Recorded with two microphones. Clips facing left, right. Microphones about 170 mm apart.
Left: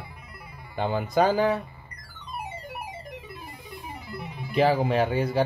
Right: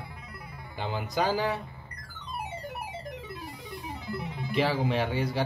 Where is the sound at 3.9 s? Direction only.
10° left (ahead or behind).